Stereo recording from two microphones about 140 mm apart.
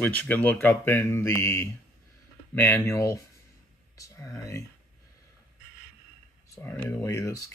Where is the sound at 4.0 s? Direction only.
25° left (ahead or behind).